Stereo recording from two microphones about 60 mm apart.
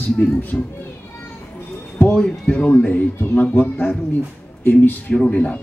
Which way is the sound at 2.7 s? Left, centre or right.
Left.